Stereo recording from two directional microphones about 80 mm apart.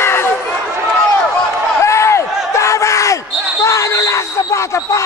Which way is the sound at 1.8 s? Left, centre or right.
Left.